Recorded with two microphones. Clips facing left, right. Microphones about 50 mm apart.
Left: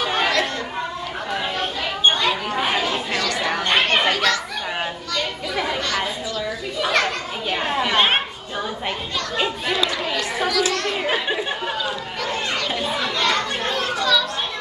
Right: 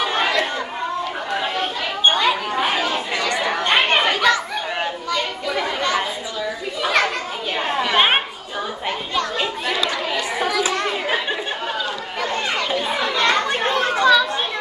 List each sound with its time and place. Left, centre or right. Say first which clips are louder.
0.0 s chatter: right 1 dB; centre
3.2 s chatter: right 2 dB; centre
6.8 s children playing: right 1 dB; centre
7.5 s chatter: right 1 dB; centre
10.1 s children playing: right 1 dB; centre
12.2 s children playing: right 3 dB; centre